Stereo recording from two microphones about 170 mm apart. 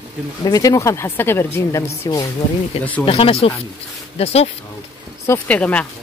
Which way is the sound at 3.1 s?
30° left (ahead or behind).